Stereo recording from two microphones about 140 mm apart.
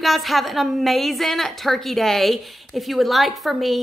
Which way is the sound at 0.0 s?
Centre (ahead or behind).